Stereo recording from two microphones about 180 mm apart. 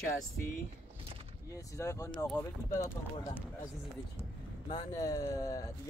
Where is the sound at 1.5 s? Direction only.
15° left (ahead or behind).